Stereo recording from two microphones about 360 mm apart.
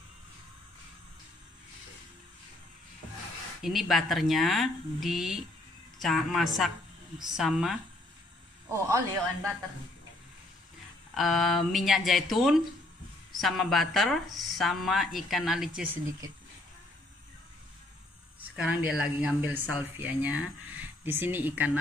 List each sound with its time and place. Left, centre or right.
3.6 s speech: centre
11.1 s speech: centre
18.6 s speech: centre